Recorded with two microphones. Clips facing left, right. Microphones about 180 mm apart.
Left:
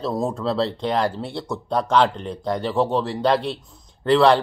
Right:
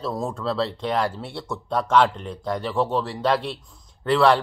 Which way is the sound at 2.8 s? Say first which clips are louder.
Left 2 dB; centre (ahead or behind).